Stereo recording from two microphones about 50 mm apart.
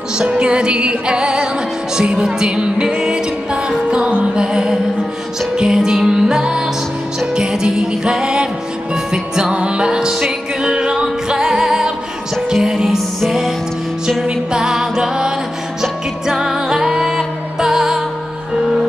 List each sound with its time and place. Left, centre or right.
0.2 s music: centre
14.2 s music: centre